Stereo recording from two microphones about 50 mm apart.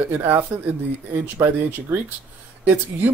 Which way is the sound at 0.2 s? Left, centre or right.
Right.